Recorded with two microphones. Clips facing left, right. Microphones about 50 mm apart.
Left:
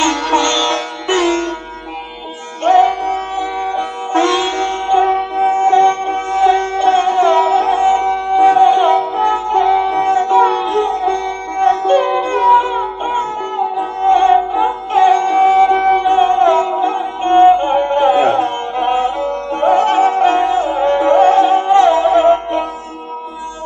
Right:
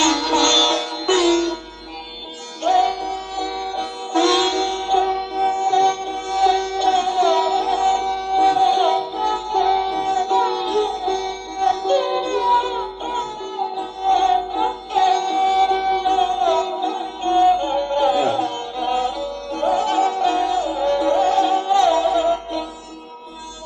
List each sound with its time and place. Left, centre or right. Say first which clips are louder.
0.0 s music: left 3 dB; left
2.6 s music: left 7 dB; left